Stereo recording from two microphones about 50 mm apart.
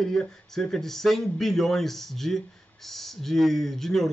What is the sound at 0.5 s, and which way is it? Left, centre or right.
A man's voice, centre.